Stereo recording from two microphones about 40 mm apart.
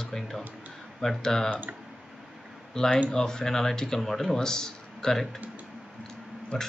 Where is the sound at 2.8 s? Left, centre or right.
Centre.